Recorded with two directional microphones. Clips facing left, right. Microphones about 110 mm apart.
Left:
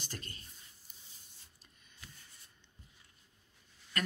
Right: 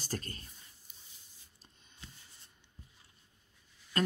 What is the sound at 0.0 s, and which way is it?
Speech, 40° right (ahead or behind).